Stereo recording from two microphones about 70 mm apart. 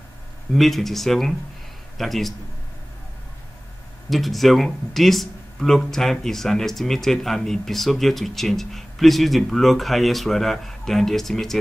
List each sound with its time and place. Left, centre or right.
0.5 s speech: centre
4.1 s speech: centre